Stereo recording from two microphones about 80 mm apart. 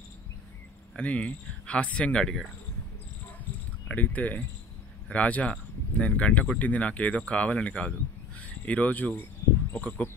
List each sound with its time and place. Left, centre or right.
0.9 s speech: centre
3.9 s speech: centre
9.4 s cricket: left
9.8 s speech: centre